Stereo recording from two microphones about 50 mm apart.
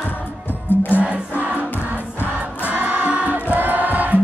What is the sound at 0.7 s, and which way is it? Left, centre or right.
Music, left.